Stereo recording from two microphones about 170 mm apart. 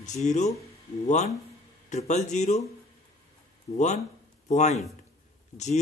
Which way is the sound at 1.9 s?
45° left (ahead or behind).